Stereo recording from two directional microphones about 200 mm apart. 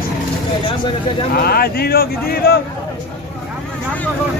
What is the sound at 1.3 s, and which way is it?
Speech, 50° left (ahead or behind).